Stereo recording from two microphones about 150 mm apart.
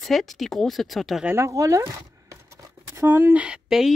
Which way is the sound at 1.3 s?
20° right (ahead or behind).